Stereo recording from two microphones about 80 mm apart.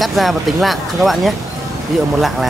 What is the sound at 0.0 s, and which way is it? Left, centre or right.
Speech, centre.